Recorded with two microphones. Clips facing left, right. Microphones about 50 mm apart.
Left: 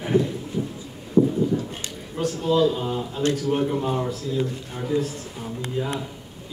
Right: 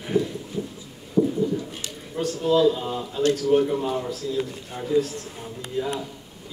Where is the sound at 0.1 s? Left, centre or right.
Left.